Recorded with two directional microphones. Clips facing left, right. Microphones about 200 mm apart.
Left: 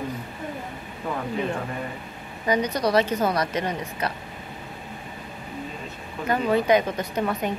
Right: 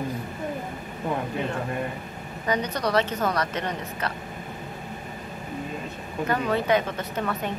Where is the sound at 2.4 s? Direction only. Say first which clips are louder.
Left 3 dB; 10° left (ahead or behind).